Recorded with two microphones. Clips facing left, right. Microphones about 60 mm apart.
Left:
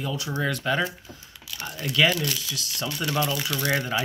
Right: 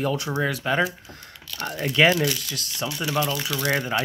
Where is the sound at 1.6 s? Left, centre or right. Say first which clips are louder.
Right 6 dB; right.